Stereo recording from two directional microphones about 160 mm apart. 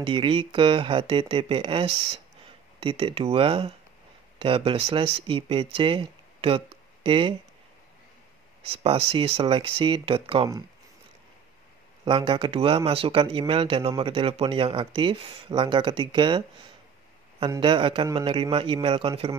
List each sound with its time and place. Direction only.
0.0 s speech: 30° right (ahead or behind)
8.7 s speech: 35° right (ahead or behind)
12.0 s speech: 30° right (ahead or behind)
17.6 s speech: 30° right (ahead or behind)